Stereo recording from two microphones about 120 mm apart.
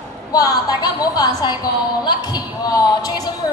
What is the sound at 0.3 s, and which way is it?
A woman's voice, 30° left (ahead or behind).